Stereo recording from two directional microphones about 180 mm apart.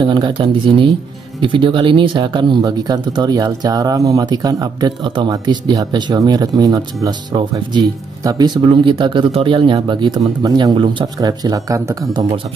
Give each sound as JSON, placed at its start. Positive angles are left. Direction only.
{"t": 0.0, "sound": "speech", "side_deg": -25}